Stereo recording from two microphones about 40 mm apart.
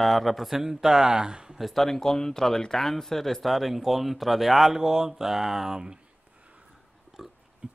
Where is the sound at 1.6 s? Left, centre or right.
Centre.